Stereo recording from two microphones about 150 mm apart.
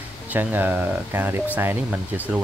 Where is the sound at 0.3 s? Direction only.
10° right (ahead or behind).